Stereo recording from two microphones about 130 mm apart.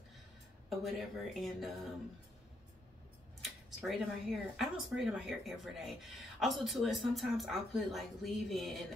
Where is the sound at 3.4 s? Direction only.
Centre (ahead or behind).